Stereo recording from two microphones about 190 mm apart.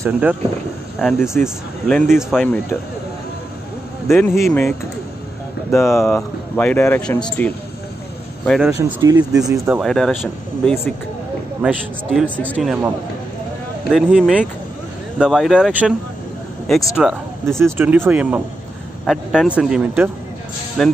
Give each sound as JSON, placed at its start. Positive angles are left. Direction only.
{"t": 0.0, "sound": "speech", "side_deg": -10}
{"t": 4.4, "sound": "speech", "side_deg": 5}
{"t": 8.5, "sound": "speech", "side_deg": 0}
{"t": 8.7, "sound": "speech", "side_deg": -15}
{"t": 9.8, "sound": "speech", "side_deg": 5}
{"t": 13.9, "sound": "speech", "side_deg": -5}
{"t": 17.7, "sound": "speech", "side_deg": -10}